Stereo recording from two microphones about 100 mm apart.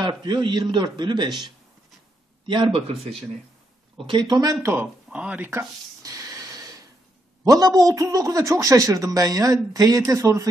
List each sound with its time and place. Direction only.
0.0 s a man's voice: 45° right (ahead or behind); by 3.3 s 70° right (ahead or behind)
3.9 s a man's voice: 55° right (ahead or behind)
5.1 s speech: 15° right (ahead or behind)
6.0 s a sound: 30° right (ahead or behind)
7.4 s a man's voice: 35° right (ahead or behind)